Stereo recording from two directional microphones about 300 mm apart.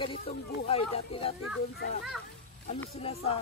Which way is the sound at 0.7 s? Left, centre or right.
Centre.